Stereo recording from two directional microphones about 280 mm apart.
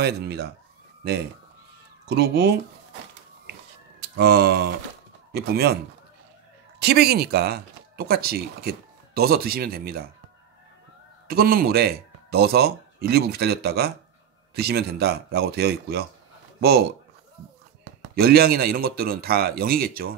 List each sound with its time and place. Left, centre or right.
0.0 s speech: right
4.2 s speech: right
6.8 s speech: right
11.2 s speech: right
18.1 s speech: right